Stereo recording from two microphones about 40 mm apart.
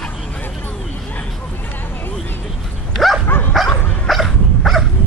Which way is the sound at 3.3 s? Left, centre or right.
Left.